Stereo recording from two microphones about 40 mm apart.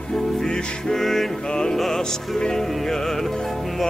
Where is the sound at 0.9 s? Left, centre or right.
Centre.